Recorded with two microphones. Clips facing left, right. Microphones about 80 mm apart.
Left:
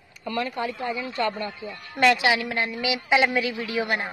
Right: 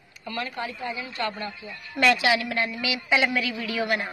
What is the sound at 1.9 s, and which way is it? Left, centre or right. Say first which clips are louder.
A woman's voice: left 1 dB; left.